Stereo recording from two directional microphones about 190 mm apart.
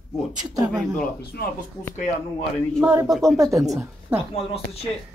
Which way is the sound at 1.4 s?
55° left (ahead or behind).